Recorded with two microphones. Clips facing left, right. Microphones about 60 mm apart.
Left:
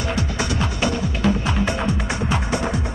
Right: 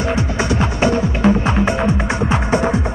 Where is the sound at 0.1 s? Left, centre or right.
Right.